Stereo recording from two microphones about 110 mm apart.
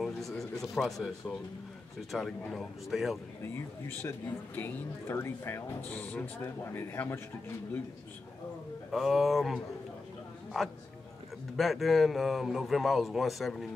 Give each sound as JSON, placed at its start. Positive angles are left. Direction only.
{"t": 0.0, "sound": "a man's voice", "side_deg": 0}
{"t": 3.4, "sound": "speech", "side_deg": 20}
{"t": 8.9, "sound": "a man's voice", "side_deg": 0}
{"t": 11.5, "sound": "a man's voice", "side_deg": 0}